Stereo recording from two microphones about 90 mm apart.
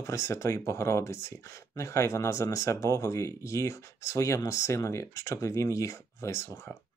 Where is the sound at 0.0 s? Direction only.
35° left (ahead or behind).